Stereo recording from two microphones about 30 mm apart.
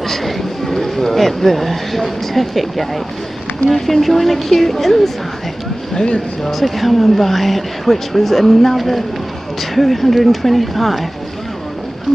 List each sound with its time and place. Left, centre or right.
0.0 s speech: centre
6.1 s speech: centre